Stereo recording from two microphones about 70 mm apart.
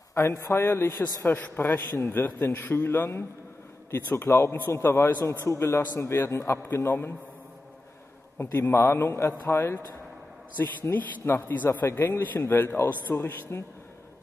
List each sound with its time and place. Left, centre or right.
0.1 s speech: left
0.6 s a man's voice: left
8.4 s a man's voice: left